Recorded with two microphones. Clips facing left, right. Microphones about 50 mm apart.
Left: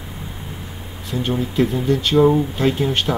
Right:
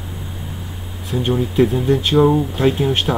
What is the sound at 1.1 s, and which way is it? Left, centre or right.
Speech, centre.